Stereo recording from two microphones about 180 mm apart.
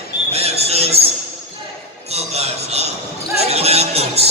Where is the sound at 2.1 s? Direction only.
35° right (ahead or behind).